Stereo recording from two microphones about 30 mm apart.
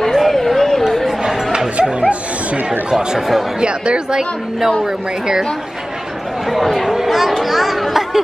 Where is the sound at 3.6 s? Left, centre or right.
Right.